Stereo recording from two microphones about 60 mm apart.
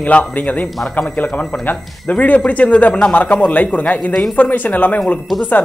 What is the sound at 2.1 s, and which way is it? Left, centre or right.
Speech, left.